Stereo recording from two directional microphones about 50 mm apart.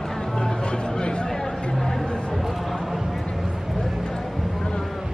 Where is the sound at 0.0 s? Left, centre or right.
Centre.